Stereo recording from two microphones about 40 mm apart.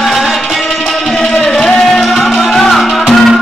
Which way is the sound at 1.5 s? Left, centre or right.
Centre.